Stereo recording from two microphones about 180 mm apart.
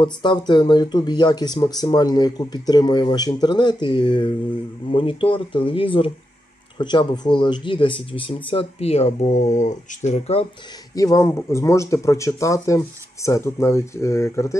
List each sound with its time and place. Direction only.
0.0 s speech: 25° left (ahead or behind)
11.0 s speech: 20° left (ahead or behind)